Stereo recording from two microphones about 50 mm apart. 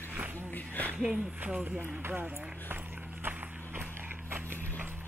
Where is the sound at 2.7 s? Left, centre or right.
Right.